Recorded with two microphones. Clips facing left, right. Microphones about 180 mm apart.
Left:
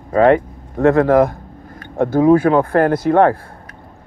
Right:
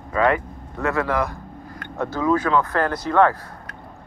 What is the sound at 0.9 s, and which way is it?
Speech, 45° left (ahead or behind).